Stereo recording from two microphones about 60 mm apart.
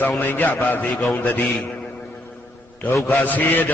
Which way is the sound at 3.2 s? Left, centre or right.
Left.